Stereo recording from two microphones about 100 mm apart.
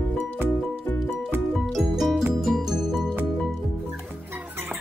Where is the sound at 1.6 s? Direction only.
Centre (ahead or behind).